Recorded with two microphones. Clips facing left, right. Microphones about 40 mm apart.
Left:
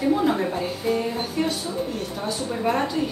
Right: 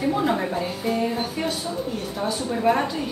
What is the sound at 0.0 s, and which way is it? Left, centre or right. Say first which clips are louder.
A woman's voice: left 1 dB; centre.